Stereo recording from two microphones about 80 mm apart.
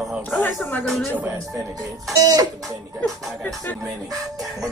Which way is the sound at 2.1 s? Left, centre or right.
Right.